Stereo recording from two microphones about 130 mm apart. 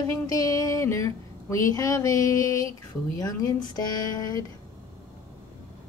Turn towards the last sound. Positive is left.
turn(degrees=30)  # may be behind; listen again after turning